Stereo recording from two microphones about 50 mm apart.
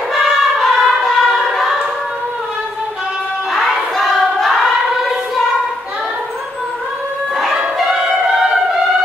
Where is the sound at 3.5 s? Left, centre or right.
Centre.